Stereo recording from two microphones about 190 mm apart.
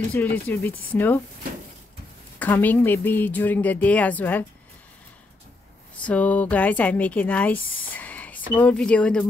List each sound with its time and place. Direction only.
0.1 s speech: 10° left (ahead or behind)
2.3 s speech: 10° left (ahead or behind)
6.0 s speech: 5° left (ahead or behind)